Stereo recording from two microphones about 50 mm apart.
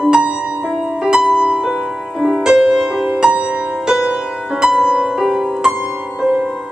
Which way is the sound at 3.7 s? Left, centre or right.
Centre.